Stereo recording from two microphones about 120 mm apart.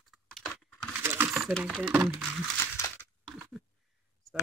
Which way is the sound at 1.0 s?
20° right (ahead or behind).